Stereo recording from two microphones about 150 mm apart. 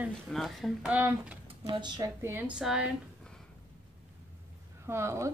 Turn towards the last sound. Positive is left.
turn(degrees=-20)  # may be behind; listen again after turning